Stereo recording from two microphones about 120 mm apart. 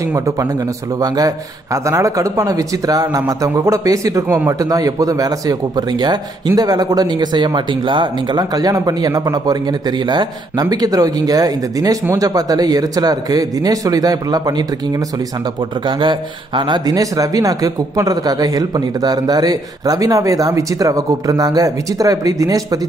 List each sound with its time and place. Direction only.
1.0 s speech: 30° right (ahead or behind)
16.0 s speech: 40° right (ahead or behind)